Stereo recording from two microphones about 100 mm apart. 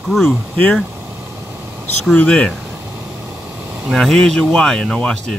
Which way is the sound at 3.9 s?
5° left (ahead or behind).